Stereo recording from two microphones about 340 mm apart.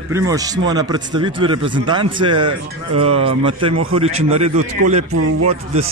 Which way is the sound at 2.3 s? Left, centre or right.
Right.